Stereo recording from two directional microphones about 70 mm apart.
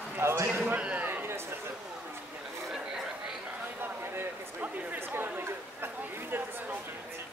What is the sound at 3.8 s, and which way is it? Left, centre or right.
Chatter, right.